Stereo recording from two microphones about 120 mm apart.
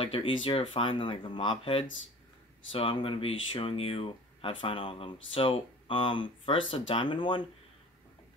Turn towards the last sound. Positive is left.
turn(degrees=45)  # may be behind; listen again after turning